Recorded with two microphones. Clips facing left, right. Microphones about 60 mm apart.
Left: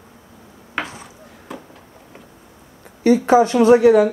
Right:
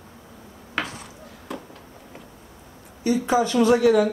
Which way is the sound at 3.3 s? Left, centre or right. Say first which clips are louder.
Left 6 dB; left.